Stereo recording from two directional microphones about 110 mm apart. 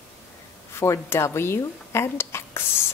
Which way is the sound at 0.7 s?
25° left (ahead or behind).